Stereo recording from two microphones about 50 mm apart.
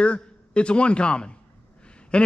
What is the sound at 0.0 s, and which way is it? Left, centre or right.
A man's voice, left.